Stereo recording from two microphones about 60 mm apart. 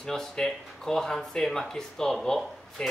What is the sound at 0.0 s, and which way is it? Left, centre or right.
Speech, centre.